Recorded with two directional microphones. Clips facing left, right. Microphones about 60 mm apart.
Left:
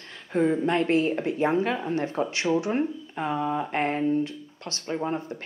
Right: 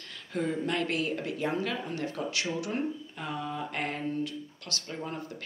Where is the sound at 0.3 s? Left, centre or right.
Left.